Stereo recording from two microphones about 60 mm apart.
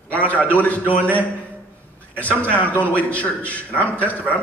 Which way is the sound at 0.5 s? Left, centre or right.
Left.